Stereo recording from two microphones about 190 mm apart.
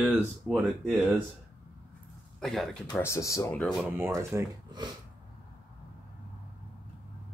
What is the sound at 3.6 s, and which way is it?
Speech, 5° right (ahead or behind).